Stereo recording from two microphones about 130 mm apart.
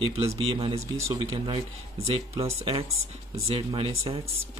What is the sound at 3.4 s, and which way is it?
Speech, 45° right (ahead or behind).